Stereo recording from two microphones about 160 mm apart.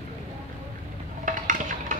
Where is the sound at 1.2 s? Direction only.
55° right (ahead or behind).